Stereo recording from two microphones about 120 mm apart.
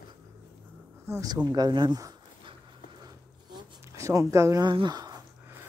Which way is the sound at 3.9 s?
25° right (ahead or behind).